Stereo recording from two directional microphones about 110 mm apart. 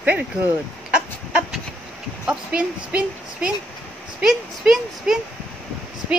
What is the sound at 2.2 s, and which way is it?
Speech, 10° right (ahead or behind).